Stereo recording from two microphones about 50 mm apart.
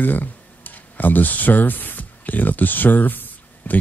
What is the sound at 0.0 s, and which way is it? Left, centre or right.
Speech, left.